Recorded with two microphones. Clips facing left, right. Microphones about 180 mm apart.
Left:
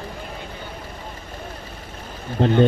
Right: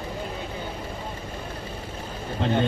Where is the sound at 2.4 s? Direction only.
50° left (ahead or behind).